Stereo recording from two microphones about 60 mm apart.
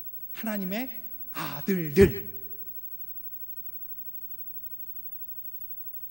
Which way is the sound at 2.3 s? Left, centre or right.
Left.